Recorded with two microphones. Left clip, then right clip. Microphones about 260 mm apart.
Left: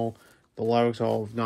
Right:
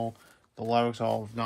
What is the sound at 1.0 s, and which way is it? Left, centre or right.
Speech, right.